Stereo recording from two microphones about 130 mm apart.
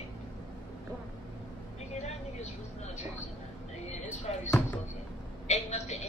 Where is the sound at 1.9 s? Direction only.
60° left (ahead or behind).